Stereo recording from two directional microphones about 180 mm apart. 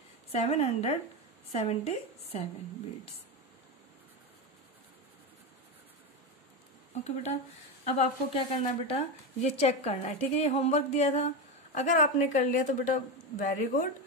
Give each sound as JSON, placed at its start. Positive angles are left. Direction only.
{"t": 0.3, "sound": "a woman's voice", "side_deg": 35}
{"t": 6.9, "sound": "a woman's voice", "side_deg": 35}